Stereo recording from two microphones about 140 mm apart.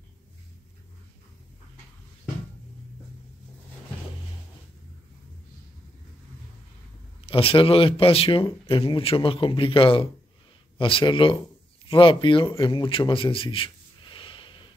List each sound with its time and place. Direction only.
7.2 s speech: 40° left (ahead or behind)